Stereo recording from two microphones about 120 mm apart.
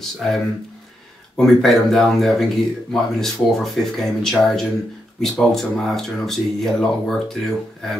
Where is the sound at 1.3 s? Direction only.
Centre (ahead or behind).